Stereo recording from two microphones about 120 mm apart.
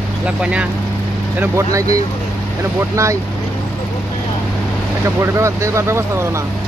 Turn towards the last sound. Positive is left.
turn(degrees=-25)  # may be behind; listen again after turning